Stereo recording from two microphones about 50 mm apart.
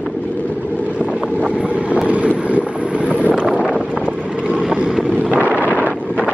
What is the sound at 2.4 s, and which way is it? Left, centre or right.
Vehicle, right.